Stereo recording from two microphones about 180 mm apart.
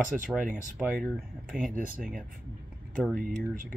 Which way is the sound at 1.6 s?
50° right (ahead or behind).